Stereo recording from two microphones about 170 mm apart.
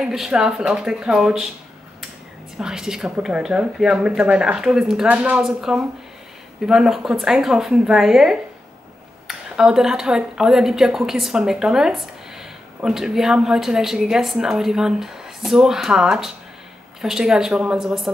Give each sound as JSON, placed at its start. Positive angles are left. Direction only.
{"t": 0.0, "sound": "speech", "side_deg": -5}
{"t": 2.6, "sound": "speech", "side_deg": -5}